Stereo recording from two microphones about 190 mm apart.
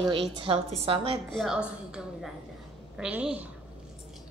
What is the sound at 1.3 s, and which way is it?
A woman's voice, centre (ahead or behind).